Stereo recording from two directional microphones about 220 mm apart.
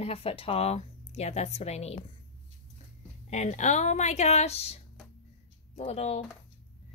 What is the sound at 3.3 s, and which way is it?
A woman's voice, 30° left (ahead or behind).